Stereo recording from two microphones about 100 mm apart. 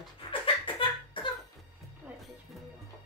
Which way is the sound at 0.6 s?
55° left (ahead or behind).